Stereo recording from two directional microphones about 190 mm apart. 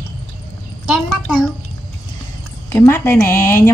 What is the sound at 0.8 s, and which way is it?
Speech, 5° right (ahead or behind).